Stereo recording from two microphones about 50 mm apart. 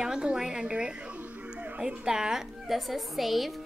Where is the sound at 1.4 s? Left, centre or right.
Right.